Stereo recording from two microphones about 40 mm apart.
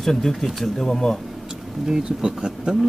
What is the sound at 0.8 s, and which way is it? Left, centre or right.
Speech, centre.